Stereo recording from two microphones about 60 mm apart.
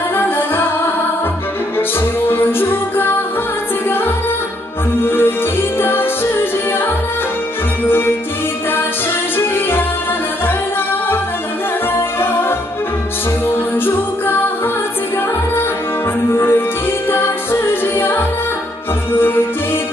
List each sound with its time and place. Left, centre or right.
2.3 s music: left
5.0 s music: left
13.8 s music: left
16.3 s music: left